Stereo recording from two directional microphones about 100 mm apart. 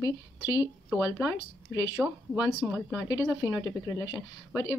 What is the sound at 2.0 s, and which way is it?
Speech, 5° right (ahead or behind).